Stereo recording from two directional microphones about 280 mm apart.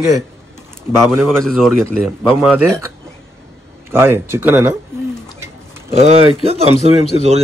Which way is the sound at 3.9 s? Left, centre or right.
Centre.